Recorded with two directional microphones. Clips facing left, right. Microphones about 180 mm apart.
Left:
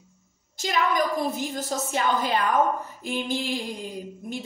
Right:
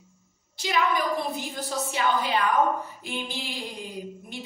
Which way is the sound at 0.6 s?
45° left (ahead or behind).